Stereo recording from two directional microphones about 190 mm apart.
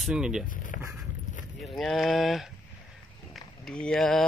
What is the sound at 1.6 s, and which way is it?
Speech, centre (ahead or behind).